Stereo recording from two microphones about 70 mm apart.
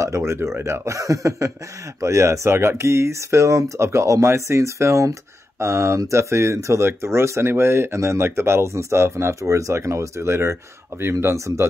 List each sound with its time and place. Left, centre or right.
0.0 s speech: right